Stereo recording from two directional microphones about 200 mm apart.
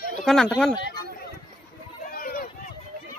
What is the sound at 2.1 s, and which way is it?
Run, 45° left (ahead or behind).